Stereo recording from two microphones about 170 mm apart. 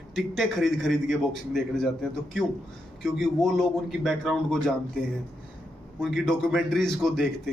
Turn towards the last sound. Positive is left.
turn(degrees=0)  # may be behind; listen again after turning